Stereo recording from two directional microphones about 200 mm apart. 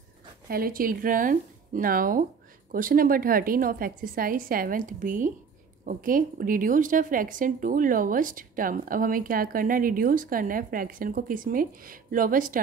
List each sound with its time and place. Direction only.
0.5 s a woman's voice: 45° right (ahead or behind)